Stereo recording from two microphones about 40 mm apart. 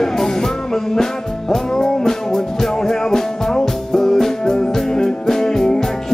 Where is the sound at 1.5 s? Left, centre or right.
Centre.